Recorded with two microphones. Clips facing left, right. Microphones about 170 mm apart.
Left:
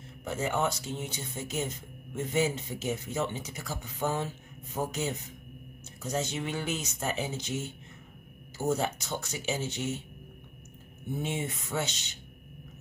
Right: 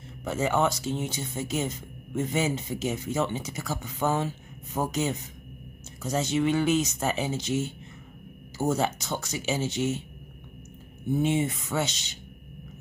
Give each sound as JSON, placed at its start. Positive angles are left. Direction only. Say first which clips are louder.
{"t": 0.2, "sound": "speech", "louder": "right 5 dB", "side_deg": -90}
{"t": 11.2, "sound": "speech", "louder": "right 8 dB", "side_deg": -90}